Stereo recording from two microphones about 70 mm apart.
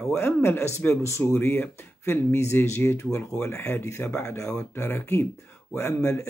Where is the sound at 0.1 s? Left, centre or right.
Left.